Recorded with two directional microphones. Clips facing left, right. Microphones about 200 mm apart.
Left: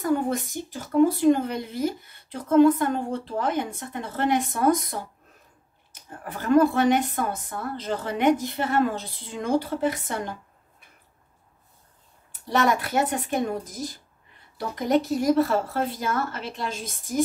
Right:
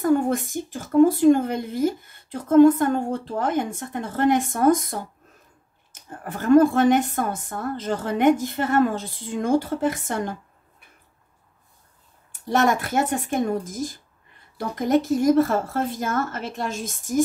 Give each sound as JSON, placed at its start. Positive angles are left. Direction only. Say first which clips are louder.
{"t": 0.0, "sound": "speech", "louder": "right 4 dB", "side_deg": -50}
{"t": 6.2, "sound": "speech", "louder": "right 4 dB", "side_deg": -50}
{"t": 12.4, "sound": "speech", "louder": "right 2 dB", "side_deg": -50}